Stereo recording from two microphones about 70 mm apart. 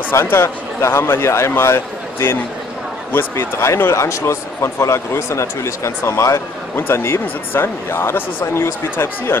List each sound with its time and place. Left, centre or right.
0.1 s speech: left